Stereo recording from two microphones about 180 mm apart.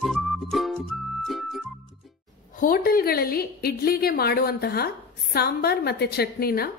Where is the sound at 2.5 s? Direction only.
50° left (ahead or behind).